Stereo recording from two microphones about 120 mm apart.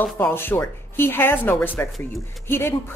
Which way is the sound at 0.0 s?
20° left (ahead or behind).